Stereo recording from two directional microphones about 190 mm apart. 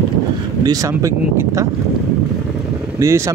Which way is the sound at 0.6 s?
20° right (ahead or behind).